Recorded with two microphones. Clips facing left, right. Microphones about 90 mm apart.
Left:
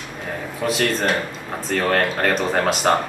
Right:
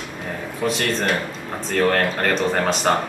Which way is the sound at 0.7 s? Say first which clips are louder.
Left 1 dB; centre (ahead or behind).